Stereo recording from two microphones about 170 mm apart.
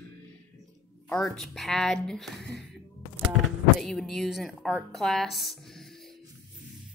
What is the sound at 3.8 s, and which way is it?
A woman's voice, centre (ahead or behind).